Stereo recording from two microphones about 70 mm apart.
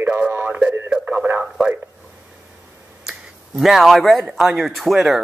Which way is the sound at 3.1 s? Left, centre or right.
Centre.